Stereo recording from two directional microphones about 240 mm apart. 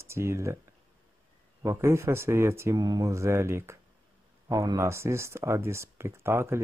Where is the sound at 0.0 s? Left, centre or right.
Centre.